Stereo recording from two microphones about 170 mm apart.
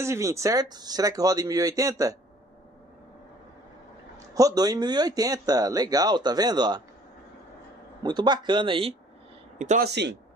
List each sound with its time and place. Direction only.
0.0 s speech: 15° right (ahead or behind)
4.4 s speech: 20° right (ahead or behind)
8.0 s speech: 25° right (ahead or behind)
9.6 s speech: 45° right (ahead or behind)
9.8 s speech: 85° right